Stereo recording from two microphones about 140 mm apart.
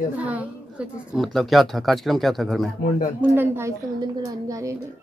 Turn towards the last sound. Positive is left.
turn(degrees=-25)  # may be behind; listen again after turning